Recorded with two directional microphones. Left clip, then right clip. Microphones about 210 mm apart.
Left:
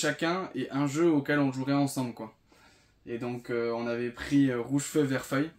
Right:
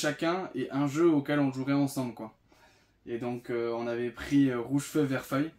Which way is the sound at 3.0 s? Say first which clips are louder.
Even; 10° left (ahead or behind).